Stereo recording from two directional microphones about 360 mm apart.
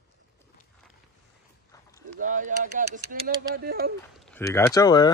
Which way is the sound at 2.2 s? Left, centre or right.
Right.